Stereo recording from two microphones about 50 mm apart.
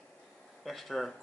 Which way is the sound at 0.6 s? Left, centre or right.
Centre.